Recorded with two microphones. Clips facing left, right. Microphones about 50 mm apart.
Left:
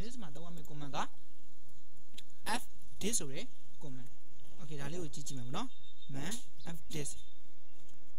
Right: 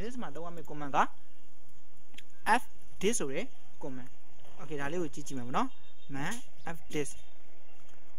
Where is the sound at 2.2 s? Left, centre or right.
Right.